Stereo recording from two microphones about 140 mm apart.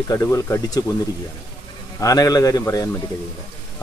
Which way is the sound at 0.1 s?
20° left (ahead or behind).